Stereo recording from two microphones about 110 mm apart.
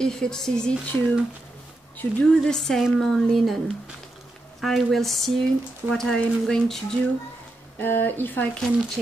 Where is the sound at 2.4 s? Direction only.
5° left (ahead or behind).